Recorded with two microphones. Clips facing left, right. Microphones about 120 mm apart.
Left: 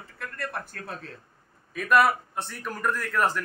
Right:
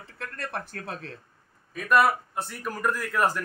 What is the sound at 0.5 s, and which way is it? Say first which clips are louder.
Speech: right 2 dB; 75° right (ahead or behind).